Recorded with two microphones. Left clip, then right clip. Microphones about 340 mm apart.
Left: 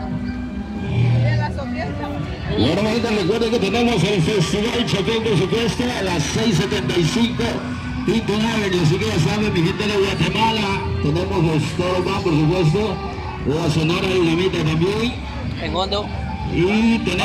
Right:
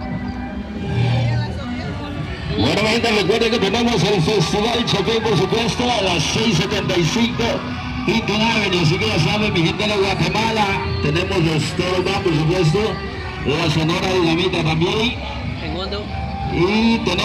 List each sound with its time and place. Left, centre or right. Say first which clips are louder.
2.6 s speech: right 3 dB; right; by 15.1 s centre
16.5 s speech: right 1 dB; centre